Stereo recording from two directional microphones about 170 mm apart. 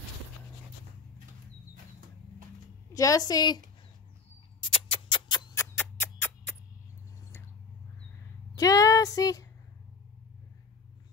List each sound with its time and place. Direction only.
2.9 s a woman's voice: 20° left (ahead or behind)
4.6 s music: 30° left (ahead or behind); by 6.5 s 10° left (ahead or behind)
8.5 s a sound: 20° left (ahead or behind)